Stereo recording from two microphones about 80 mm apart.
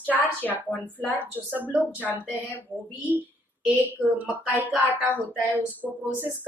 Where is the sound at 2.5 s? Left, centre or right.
Left.